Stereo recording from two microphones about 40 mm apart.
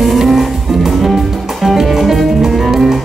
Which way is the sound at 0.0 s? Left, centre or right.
Centre.